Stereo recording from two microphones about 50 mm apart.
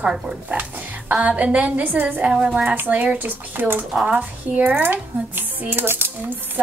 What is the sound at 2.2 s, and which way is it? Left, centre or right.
Speech, right.